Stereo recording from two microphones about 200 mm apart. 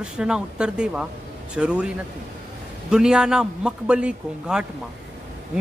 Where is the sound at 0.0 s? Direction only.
5° right (ahead or behind).